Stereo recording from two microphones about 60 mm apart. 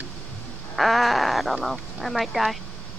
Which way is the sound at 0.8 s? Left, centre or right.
Centre.